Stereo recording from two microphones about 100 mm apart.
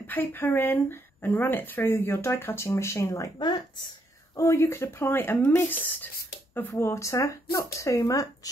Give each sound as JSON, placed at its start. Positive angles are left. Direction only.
{"t": 0.0, "sound": "speech", "side_deg": 20}
{"t": 3.3, "sound": "a woman's voice", "side_deg": 45}
{"t": 4.4, "sound": "speech", "side_deg": 30}